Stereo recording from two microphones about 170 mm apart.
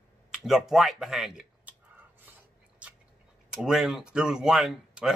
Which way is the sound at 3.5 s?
Centre (ahead or behind).